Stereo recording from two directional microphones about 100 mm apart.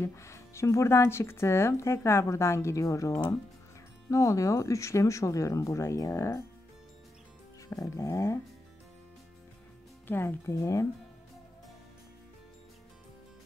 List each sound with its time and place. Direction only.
0.0 s speech: 30° left (ahead or behind)
7.6 s speech: 30° left (ahead or behind)
10.0 s speech: 20° left (ahead or behind)